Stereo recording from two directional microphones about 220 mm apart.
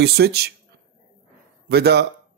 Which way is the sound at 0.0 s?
45° right (ahead or behind).